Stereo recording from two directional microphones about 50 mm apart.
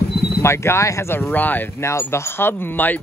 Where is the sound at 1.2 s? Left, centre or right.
Left.